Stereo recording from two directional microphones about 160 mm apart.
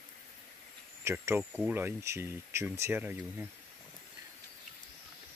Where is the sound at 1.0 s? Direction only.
15° right (ahead or behind).